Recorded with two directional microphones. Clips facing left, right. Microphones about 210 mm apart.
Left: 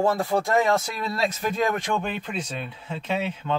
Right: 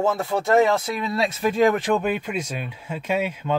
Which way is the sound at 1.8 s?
5° right (ahead or behind).